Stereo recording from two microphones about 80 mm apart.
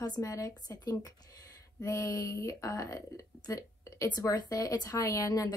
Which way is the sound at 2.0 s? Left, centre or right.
Left.